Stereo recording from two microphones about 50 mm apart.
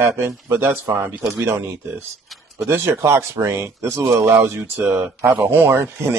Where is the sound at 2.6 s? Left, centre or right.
Right.